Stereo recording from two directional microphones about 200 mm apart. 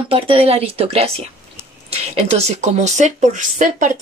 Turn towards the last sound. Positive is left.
turn(degrees=-40)  # may be behind; listen again after turning